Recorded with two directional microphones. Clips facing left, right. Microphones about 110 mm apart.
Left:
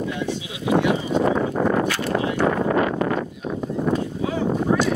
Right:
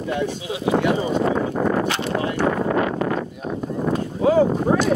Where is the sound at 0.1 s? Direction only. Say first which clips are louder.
Right 3 dB; 40° right (ahead or behind).